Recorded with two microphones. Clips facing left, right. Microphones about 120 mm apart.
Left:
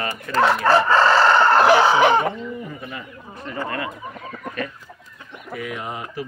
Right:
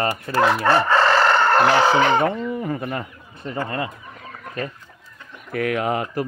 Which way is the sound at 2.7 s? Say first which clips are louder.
Right 8 dB; 55° right (ahead or behind).